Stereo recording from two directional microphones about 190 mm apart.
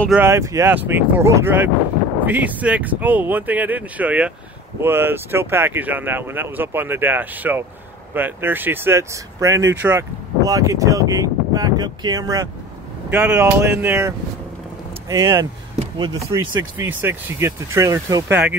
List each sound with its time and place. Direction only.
0.1 s speech: 15° right (ahead or behind)